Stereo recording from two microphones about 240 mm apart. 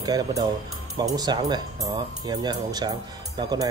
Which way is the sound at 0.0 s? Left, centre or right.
Centre.